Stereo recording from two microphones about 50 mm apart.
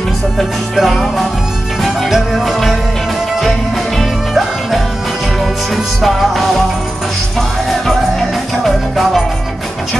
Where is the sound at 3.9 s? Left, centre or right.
Centre.